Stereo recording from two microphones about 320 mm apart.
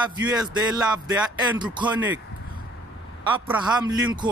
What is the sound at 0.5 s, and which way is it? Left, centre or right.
Speech, centre.